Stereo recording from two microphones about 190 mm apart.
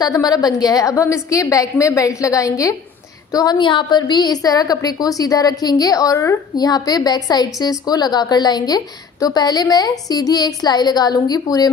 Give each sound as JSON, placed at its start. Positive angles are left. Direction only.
{"t": 0.0, "sound": "a woman's voice", "side_deg": 20}